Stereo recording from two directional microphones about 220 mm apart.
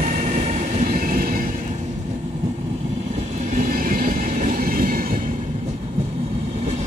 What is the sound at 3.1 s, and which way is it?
Train, 35° right (ahead or behind).